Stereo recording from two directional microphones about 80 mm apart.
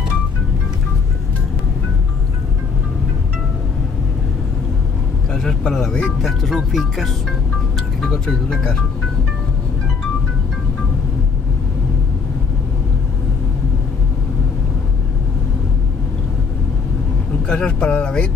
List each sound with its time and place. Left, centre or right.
5.3 s speech: centre
17.5 s speech: centre